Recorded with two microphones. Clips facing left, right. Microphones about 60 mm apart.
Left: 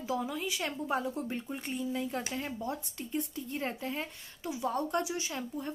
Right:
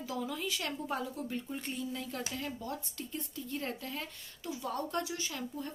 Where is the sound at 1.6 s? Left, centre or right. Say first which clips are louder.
Left 4 dB; centre.